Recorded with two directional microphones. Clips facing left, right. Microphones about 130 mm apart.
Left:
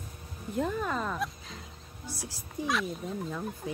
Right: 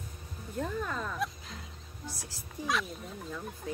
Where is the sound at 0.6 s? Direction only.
20° left (ahead or behind).